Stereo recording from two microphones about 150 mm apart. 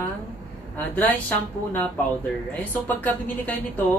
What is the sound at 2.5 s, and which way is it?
A woman's voice, 10° left (ahead or behind).